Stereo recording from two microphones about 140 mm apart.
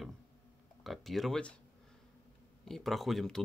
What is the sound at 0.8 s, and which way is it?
Speech, centre (ahead or behind).